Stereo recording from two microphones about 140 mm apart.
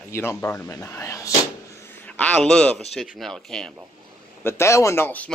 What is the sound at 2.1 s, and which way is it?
Speech, 10° left (ahead or behind).